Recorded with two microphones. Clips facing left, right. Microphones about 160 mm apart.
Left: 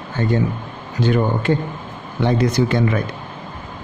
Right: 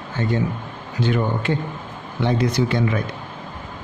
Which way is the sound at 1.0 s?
45° left (ahead or behind).